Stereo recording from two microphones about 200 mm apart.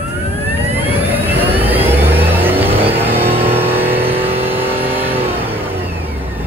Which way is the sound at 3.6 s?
10° right (ahead or behind).